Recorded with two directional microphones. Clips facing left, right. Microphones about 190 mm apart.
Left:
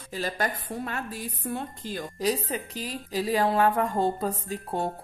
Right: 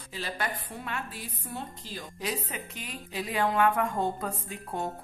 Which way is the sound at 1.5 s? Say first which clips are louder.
Left 6 dB; 50° left (ahead or behind).